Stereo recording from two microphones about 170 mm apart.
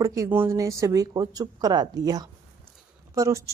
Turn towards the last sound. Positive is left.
turn(degrees=-20)  # may be behind; listen again after turning